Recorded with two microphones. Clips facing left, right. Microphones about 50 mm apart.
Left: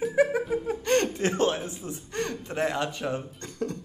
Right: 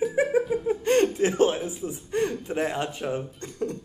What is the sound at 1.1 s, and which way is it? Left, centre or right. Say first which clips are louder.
A man's voice: right 3 dB; centre.